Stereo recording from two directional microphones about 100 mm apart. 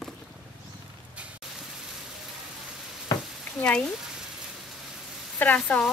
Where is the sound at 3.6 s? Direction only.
10° left (ahead or behind).